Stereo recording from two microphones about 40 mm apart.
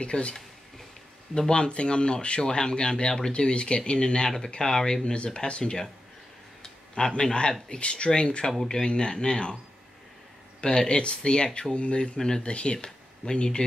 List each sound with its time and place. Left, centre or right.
0.0 s speech: left
1.5 s speech: left
5.0 s speech: left
6.6 s a sound: centre
7.8 s speech: left
8.5 s speech: centre
10.6 s speech: left
12.2 s speech: centre
12.4 s speech: left